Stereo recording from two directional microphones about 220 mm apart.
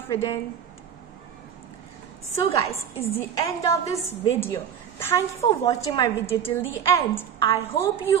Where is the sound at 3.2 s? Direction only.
15° left (ahead or behind).